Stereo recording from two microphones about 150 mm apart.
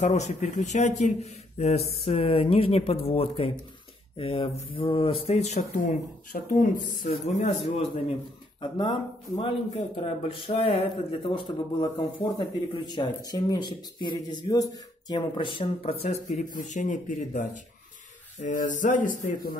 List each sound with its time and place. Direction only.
0.0 s a man's voice: 50° left (ahead or behind)
6.3 s speech: 65° left (ahead or behind)
7.1 s a man's voice: 50° left (ahead or behind)
8.5 s speech: 30° left (ahead or behind)
16.3 s speech: 55° left (ahead or behind)